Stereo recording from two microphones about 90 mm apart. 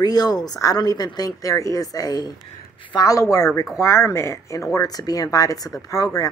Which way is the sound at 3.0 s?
40° left (ahead or behind).